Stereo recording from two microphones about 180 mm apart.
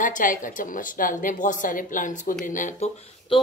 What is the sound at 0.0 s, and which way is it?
Speech, 45° left (ahead or behind).